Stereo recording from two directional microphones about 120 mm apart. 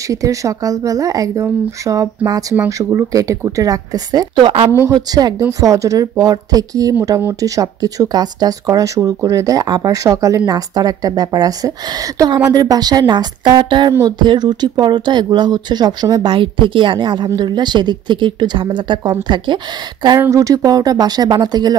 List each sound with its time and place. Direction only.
0.1 s speech: 25° right (ahead or behind)
4.4 s speech: 45° right (ahead or behind)
4.9 s speech: 30° right (ahead or behind)
7.1 s speech: 20° right (ahead or behind)
7.3 s speech: 30° right (ahead or behind)
20.2 s speech: 25° right (ahead or behind)